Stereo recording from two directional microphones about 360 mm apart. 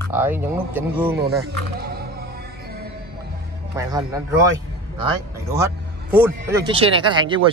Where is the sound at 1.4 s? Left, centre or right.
Right.